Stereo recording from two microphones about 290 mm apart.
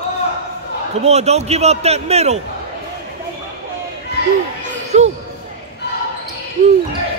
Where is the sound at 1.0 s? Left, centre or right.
Right.